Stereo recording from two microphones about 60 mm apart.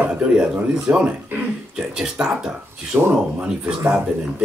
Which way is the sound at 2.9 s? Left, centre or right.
Right.